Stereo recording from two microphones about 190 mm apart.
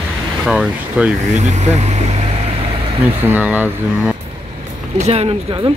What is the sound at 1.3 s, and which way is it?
Speech, 40° right (ahead or behind).